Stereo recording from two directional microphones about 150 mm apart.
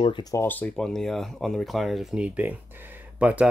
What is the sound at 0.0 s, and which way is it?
Speech, 30° left (ahead or behind).